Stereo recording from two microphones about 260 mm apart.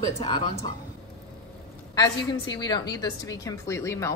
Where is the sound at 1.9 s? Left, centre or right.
Centre.